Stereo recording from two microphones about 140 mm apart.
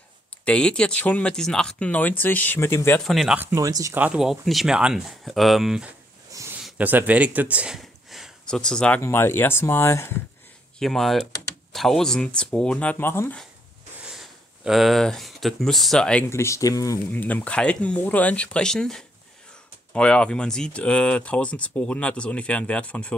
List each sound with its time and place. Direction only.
0.5 s speech: 10° left (ahead or behind)
3.0 s speech: centre (ahead or behind)
3.3 s speech: 25° right (ahead or behind)
4.0 s speech: 5° right (ahead or behind); by 10.1 s 20° left (ahead or behind)
10.8 s speech: centre (ahead or behind)
14.0 s speech: 5° right (ahead or behind)
16.3 s speech: 20° left (ahead or behind)